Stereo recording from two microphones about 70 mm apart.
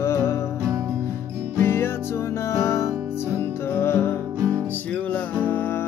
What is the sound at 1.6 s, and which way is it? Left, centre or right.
Music, left.